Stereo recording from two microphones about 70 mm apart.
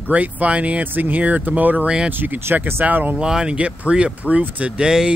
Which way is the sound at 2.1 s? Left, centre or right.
Right.